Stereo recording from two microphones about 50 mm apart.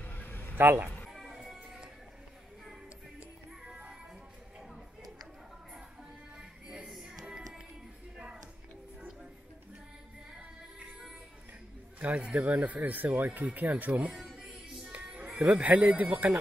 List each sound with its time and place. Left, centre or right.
0.0 s a sound: left
0.6 s speech: right
1.0 s music: centre
3.6 s music: centre
6.3 s music: centre
12.3 s speech: right
14.5 s music: right
15.4 s speech: right